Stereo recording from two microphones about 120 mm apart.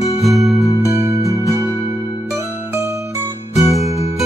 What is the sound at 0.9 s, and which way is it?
Music, 25° right (ahead or behind).